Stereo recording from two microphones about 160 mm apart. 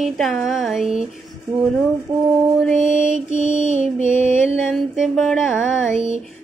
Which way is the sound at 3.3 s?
45° left (ahead or behind).